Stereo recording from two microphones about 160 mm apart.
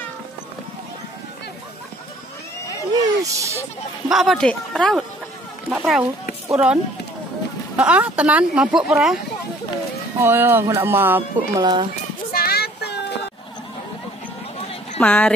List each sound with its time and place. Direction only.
2.9 s a sound: 20° right (ahead or behind)
4.1 s speech: centre (ahead or behind)
10.2 s speech: 15° right (ahead or behind)
11.6 s speech: 30° right (ahead or behind)
11.9 s a sound: 70° left (ahead or behind); by 13.2 s 90° left
15.0 s speech: 10° left (ahead or behind)